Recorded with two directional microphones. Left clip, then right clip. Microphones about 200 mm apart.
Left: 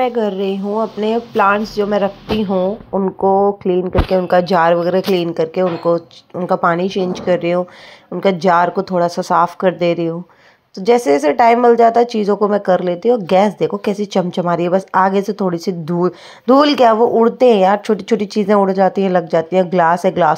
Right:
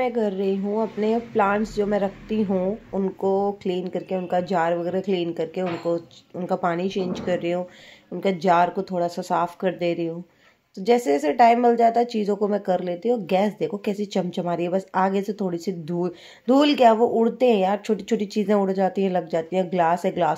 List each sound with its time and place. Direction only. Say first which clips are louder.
0.0 s a woman's voice: left 7 dB; 10° left (ahead or behind)